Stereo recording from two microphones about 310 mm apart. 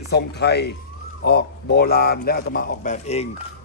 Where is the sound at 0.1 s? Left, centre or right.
Left.